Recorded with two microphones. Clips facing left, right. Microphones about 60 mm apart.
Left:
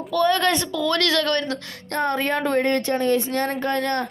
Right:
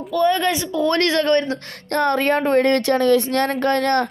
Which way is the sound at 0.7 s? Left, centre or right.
Right.